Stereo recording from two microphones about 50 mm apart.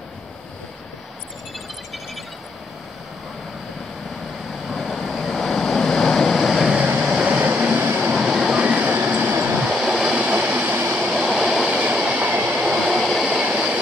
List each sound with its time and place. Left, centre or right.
4.6 s waves: centre
6.5 s vehicle: centre
7.5 s train: right
8.1 s train: centre
8.5 s train: right
9.8 s a sound: centre
10.1 s vehicle: right
11.0 s train: centre
12.0 s train: right
12.6 s train: centre
13.4 s train: centre